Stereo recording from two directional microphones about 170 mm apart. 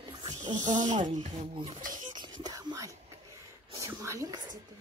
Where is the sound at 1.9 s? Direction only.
25° right (ahead or behind).